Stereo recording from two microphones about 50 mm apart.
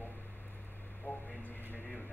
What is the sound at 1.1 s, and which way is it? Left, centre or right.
Speech, left.